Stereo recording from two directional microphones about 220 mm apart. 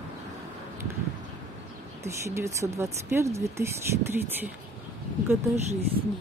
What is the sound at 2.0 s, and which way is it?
Speech, 10° right (ahead or behind).